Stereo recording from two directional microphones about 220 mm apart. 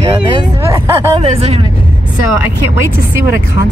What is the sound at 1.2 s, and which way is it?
Speech, 30° right (ahead or behind).